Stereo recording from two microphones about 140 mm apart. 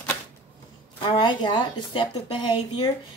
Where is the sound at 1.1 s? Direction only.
35° left (ahead or behind).